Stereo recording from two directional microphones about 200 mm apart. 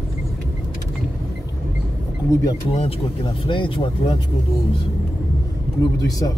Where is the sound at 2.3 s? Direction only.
20° left (ahead or behind).